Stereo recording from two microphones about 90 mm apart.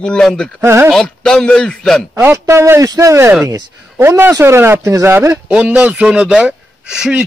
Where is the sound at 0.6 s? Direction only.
30° right (ahead or behind).